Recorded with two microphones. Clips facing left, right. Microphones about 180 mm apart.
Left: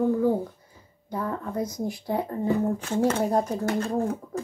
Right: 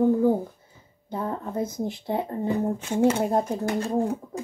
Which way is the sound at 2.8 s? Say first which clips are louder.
Right 2 dB; 15° right (ahead or behind).